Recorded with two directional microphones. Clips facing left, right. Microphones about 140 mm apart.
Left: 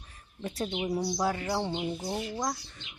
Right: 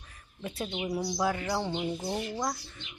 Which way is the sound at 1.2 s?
30° left (ahead or behind).